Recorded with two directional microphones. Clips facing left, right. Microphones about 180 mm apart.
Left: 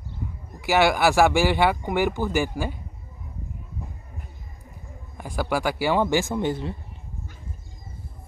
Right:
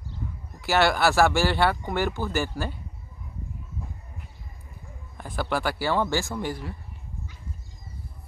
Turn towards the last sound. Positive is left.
turn(degrees=25)  # may be behind; listen again after turning